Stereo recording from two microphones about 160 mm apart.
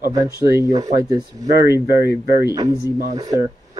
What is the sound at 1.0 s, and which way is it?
Speech, 25° right (ahead or behind).